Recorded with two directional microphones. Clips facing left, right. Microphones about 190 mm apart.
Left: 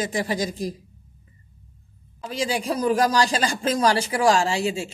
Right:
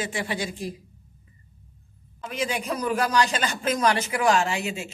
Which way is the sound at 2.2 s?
30° left (ahead or behind).